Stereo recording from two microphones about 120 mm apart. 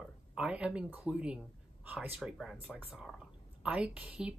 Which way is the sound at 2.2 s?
Centre (ahead or behind).